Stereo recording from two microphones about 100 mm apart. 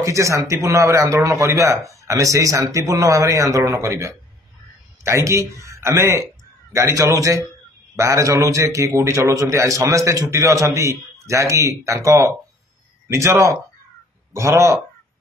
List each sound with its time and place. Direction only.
0.0 s a man's voice: 30° right (ahead or behind)